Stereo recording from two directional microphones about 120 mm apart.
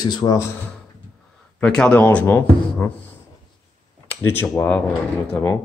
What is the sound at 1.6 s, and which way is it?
Speech, 10° left (ahead or behind).